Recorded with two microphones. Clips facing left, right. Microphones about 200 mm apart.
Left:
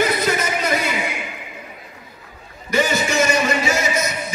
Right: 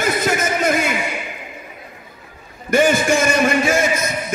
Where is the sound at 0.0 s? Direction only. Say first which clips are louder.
Even; 50° right (ahead or behind).